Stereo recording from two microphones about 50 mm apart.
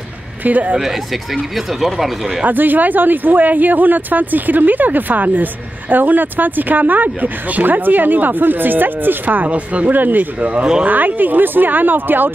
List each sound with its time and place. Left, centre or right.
0.4 s speech: right
0.7 s speech: centre
2.4 s speech: right
10.4 s speech: right
10.9 s speech: right